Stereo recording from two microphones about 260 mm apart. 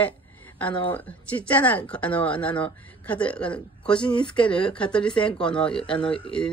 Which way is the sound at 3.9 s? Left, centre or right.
Centre.